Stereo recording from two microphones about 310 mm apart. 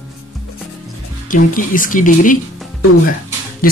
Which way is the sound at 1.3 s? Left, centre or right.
Left.